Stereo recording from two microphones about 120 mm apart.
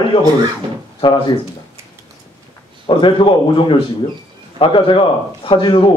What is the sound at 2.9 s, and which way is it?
A man's voice, 45° left (ahead or behind).